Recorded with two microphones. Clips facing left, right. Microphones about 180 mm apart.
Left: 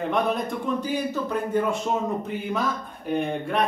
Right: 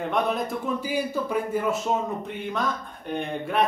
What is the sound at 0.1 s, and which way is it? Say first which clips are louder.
A man's voice: even; centre (ahead or behind).